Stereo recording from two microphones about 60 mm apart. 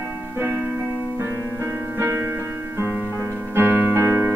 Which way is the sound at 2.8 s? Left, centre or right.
Right.